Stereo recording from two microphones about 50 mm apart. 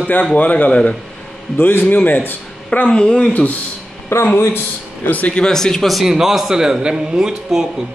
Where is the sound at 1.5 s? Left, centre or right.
Left.